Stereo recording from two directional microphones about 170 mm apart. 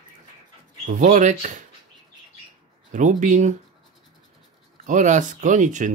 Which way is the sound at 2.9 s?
50° right (ahead or behind).